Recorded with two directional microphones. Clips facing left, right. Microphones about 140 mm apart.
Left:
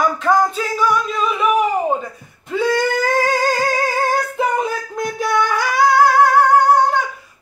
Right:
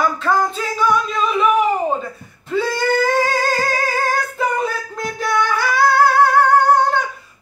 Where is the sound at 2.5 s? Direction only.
15° left (ahead or behind).